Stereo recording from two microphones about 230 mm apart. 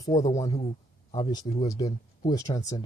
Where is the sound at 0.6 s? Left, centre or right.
Left.